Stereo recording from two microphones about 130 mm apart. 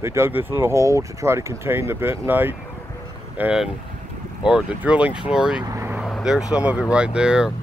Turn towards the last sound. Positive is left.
turn(degrees=-5)  # may be behind; listen again after turning